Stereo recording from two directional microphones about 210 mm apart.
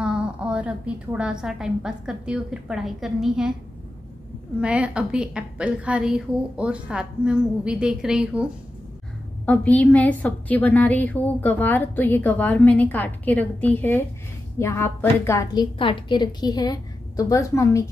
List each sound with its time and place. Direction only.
0.0 s a woman's voice: 5° right (ahead or behind)
4.6 s a woman's voice: 5° right (ahead or behind)
9.5 s a woman's voice: 5° left (ahead or behind)